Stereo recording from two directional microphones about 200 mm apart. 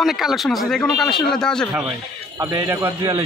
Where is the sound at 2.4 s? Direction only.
15° right (ahead or behind).